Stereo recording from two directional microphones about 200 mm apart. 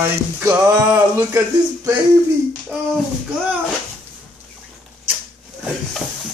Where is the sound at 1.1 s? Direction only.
15° right (ahead or behind).